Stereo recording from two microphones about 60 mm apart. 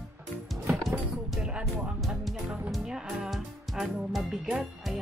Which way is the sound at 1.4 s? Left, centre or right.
Centre.